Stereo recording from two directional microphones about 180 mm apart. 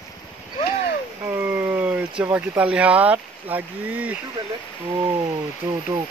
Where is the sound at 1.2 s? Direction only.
15° right (ahead or behind).